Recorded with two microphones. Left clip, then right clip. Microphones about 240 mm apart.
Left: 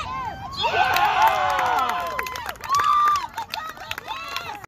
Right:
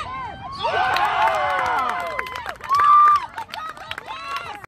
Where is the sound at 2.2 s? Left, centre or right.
Left.